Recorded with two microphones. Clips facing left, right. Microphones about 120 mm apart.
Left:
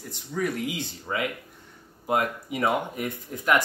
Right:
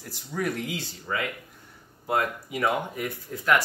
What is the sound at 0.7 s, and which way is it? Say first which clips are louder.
Speech: left 1 dB; 20° left (ahead or behind).